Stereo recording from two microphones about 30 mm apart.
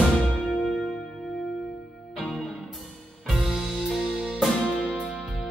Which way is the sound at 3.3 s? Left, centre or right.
Centre.